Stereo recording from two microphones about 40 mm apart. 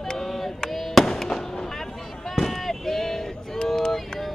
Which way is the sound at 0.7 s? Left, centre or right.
Centre.